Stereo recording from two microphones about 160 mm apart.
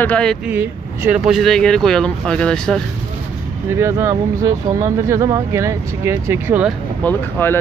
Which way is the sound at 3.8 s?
15° right (ahead or behind).